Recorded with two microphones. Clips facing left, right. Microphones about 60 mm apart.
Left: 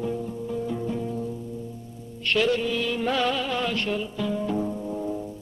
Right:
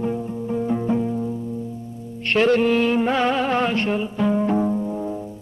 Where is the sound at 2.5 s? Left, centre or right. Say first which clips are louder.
Right 8 dB; right.